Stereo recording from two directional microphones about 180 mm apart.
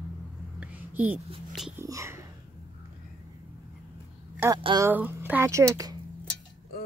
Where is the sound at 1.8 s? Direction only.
15° right (ahead or behind).